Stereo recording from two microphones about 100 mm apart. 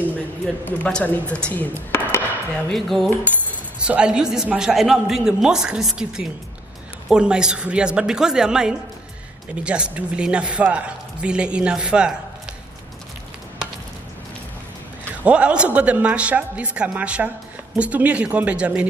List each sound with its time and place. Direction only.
0.7 s speech: 15° left (ahead or behind)
2.0 s a sound: 20° left (ahead or behind)
2.7 s a man's voice: centre (ahead or behind)
3.8 s a man's voice: 10° right (ahead or behind)
15.2 s a man's voice: 10° right (ahead or behind)